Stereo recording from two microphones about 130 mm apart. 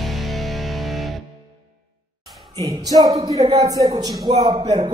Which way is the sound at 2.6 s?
30° right (ahead or behind).